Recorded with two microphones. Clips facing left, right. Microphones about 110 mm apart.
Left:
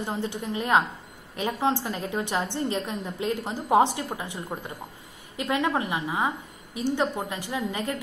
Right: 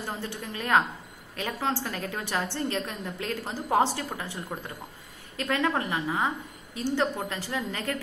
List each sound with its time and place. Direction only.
0.0 s a woman's voice: 20° left (ahead or behind)